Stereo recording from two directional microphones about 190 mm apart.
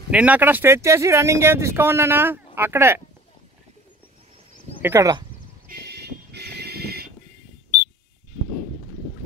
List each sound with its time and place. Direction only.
0.1 s speech: 5° right (ahead or behind)
4.8 s speech: 15° right (ahead or behind)
5.7 s a sound: 55° right (ahead or behind)